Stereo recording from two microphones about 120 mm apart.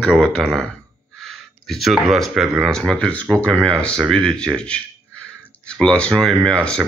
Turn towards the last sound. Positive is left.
turn(degrees=5)  # may be behind; listen again after turning